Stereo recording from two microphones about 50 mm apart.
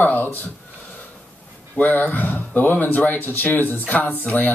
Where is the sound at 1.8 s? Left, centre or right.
Left.